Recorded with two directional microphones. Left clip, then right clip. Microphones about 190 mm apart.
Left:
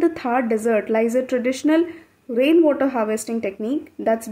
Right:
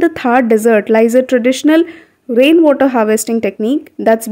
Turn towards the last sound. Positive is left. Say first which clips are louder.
# right 9 dB
turn(degrees=-45)  # may be behind; listen again after turning